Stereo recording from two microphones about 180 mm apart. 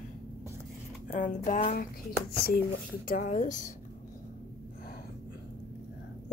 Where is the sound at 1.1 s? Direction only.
45° left (ahead or behind).